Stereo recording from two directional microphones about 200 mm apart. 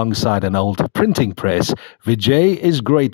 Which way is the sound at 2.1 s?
35° left (ahead or behind).